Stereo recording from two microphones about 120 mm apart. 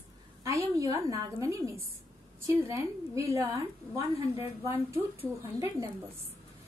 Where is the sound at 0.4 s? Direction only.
25° right (ahead or behind).